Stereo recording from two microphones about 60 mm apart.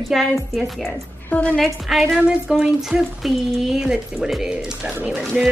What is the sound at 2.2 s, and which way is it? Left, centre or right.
Speech, centre.